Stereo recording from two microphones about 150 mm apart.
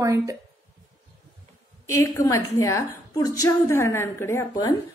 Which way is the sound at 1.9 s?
20° left (ahead or behind).